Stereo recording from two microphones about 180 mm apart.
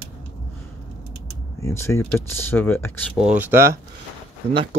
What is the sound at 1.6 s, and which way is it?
Speech, 15° left (ahead or behind).